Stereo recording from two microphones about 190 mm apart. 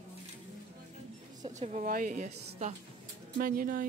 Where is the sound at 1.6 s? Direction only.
45° right (ahead or behind).